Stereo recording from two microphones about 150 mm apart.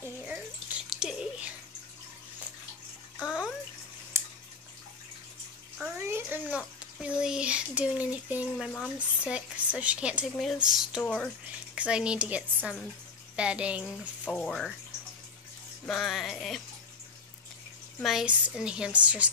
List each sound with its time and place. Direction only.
0.0 s a sound: 10° right (ahead or behind)
4.1 s a sound: 15° right (ahead or behind)
5.9 s a sound: 15° right (ahead or behind)
8.9 s speech: 10° right (ahead or behind)
10.3 s music: centre (ahead or behind)
11.5 s speech: 10° right (ahead or behind)
14.2 s music: 5° left (ahead or behind)
15.8 s music: 5° left (ahead or behind)
18.0 s speech: centre (ahead or behind)